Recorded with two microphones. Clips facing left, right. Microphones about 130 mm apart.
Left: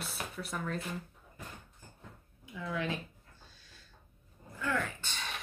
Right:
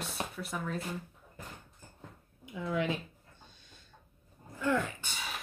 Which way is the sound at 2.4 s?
20° right (ahead or behind).